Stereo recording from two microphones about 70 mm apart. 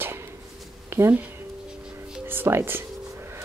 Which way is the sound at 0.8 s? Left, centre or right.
Right.